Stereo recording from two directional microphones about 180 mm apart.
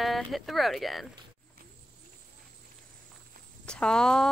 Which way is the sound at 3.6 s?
5° left (ahead or behind).